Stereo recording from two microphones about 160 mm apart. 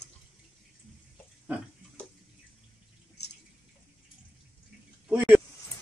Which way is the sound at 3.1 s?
90° left.